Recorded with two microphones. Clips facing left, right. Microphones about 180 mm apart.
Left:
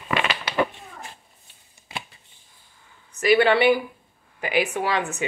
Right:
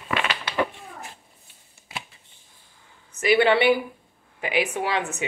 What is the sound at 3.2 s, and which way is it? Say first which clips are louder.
Speech: left 1 dB; 25° right (ahead or behind).